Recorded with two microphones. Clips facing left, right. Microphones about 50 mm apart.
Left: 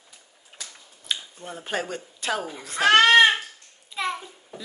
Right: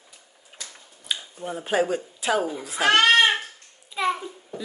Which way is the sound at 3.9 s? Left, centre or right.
Centre.